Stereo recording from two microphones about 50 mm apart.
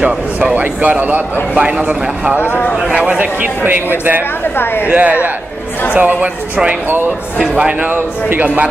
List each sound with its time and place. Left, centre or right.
0.0 s a man's voice: right
2.3 s speech: left
2.9 s speech: right
3.6 s a man's voice: right
4.6 s speech: left
4.8 s speech: right
7.8 s speech: right